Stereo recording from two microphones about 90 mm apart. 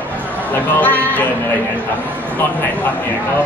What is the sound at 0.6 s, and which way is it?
Speech, 20° left (ahead or behind).